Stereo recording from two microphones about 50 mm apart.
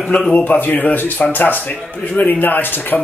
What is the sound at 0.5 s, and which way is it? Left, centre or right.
Speech, left.